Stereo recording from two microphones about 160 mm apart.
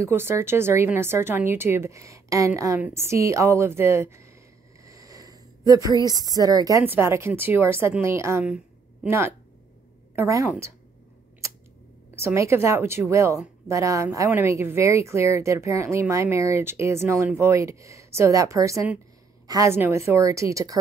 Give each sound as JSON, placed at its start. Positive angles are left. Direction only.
{"t": 0.0, "sound": "speech", "side_deg": -15}
{"t": 4.8, "sound": "a sound", "side_deg": -20}
{"t": 6.0, "sound": "speech", "side_deg": -25}
{"t": 10.1, "sound": "a woman's voice", "side_deg": -20}
{"t": 12.2, "sound": "a woman's voice", "side_deg": -15}